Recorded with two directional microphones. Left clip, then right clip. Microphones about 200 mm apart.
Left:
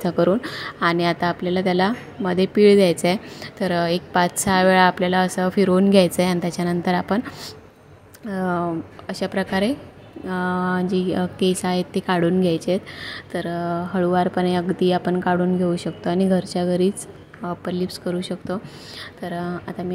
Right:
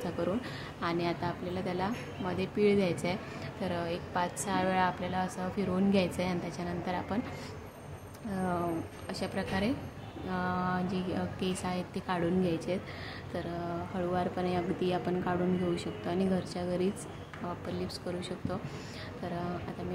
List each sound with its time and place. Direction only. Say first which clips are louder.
0.0 s a woman's voice: left 14 dB; 40° left (ahead or behind)
8.3 s a woman's voice: left 10 dB; 40° left (ahead or behind)